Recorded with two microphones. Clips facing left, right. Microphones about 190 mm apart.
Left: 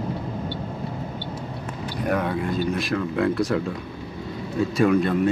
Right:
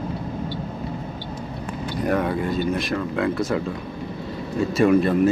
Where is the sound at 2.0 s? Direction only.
Centre (ahead or behind).